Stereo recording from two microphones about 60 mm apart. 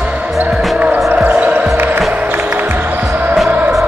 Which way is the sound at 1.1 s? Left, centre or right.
Right.